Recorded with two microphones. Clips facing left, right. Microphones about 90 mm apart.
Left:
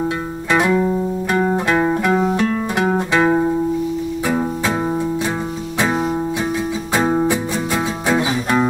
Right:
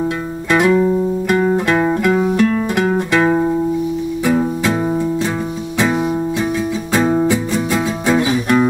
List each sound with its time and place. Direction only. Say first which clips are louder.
1.4 s music: even; 10° left (ahead or behind)
6.9 s music: right 2 dB; 15° left (ahead or behind)